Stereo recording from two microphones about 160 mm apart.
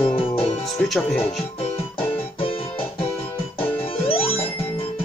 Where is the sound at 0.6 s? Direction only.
Centre (ahead or behind).